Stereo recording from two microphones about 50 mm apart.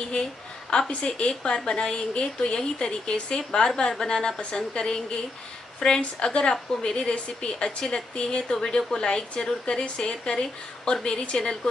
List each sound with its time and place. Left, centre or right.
0.7 s a woman's voice: centre